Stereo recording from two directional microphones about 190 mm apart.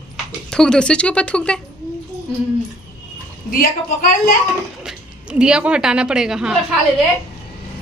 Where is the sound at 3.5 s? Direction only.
50° left (ahead or behind).